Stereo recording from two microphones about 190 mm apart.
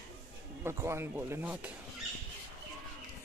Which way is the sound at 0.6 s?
15° right (ahead or behind).